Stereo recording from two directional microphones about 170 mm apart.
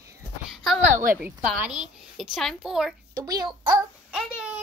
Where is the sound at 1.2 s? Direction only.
10° right (ahead or behind).